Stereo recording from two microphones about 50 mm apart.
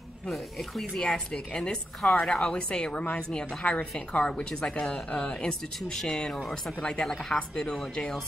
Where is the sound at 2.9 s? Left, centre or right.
Left.